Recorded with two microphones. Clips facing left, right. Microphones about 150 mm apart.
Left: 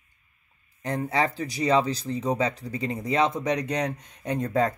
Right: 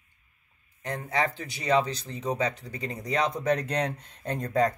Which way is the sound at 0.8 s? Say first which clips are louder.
Left 3 dB; 35° left (ahead or behind).